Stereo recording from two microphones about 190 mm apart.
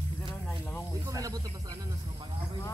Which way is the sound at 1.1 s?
20° right (ahead or behind).